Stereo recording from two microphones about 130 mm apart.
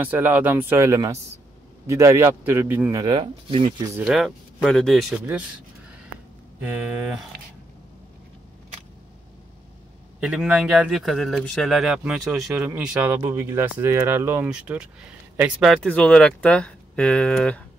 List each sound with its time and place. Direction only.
0.0 s speech: 15° right (ahead or behind)
3.0 s speech: 40° right (ahead or behind)
4.0 s speech: centre (ahead or behind)
10.2 s speech: 5° right (ahead or behind)